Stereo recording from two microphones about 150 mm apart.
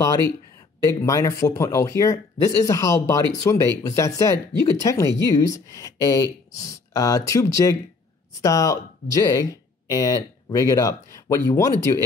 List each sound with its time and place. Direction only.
0.8 s speech: 20° left (ahead or behind)